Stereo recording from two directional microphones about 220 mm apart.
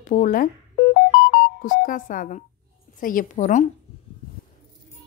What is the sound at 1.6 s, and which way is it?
Speech, 35° left (ahead or behind).